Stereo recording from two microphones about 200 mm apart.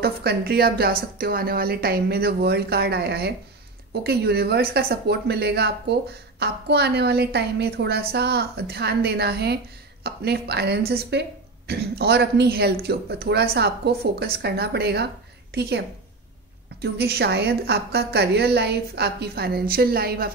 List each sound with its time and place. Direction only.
0.0 s a woman's voice: 50° right (ahead or behind)
16.8 s speech: 55° right (ahead or behind)